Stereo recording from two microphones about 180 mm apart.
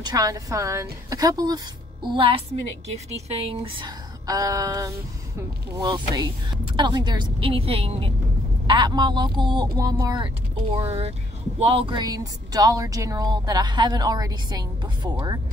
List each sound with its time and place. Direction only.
0.0 s a woman's voice: 20° right (ahead or behind)
4.3 s speech: 20° right (ahead or behind)